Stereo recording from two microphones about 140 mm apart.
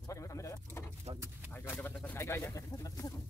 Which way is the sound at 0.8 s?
15° left (ahead or behind).